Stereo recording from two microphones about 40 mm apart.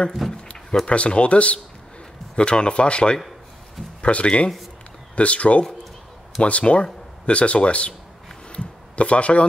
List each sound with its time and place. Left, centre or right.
0.2 s speech: centre
0.8 s speech: left
8.5 s a sound: left